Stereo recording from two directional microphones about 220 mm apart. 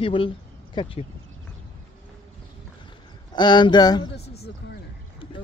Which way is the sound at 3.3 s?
20° left (ahead or behind).